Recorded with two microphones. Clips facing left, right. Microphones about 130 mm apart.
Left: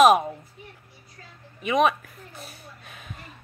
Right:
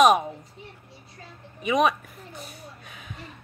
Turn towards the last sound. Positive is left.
turn(degrees=0)  # may be behind; listen again after turning